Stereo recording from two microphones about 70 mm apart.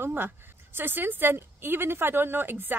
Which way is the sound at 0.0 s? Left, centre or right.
Right.